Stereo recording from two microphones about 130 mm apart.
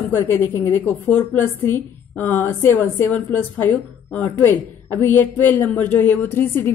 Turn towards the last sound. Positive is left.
turn(degrees=15)  # may be behind; listen again after turning